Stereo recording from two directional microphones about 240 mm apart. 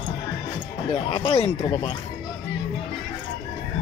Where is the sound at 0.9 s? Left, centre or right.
Left.